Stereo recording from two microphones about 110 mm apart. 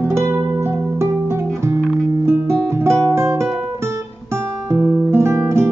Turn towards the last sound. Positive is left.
turn(degrees=-25)  # may be behind; listen again after turning